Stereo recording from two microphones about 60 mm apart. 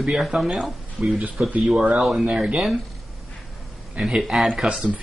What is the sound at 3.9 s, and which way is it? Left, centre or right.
Speech, centre.